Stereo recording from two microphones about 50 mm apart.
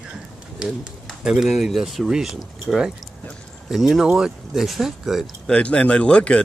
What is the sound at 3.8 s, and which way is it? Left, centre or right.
Speech, centre.